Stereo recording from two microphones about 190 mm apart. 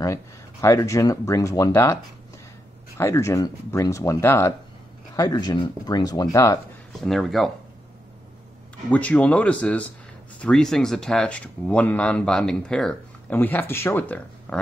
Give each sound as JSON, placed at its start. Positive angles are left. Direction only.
{"t": 0.0, "sound": "speech", "side_deg": 15}
{"t": 3.0, "sound": "speech", "side_deg": 15}
{"t": 7.0, "sound": "speech", "side_deg": 0}
{"t": 8.9, "sound": "speech", "side_deg": 5}